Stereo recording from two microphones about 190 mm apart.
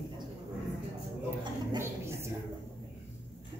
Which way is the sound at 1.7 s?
15° right (ahead or behind).